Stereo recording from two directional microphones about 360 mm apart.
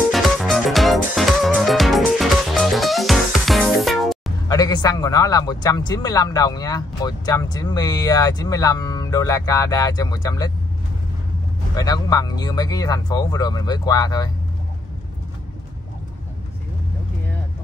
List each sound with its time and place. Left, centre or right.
0.1 s music: centre
4.6 s speech: centre
11.7 s speech: centre